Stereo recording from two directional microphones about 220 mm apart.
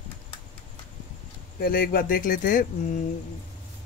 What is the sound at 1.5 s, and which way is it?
Speech, 40° left (ahead or behind).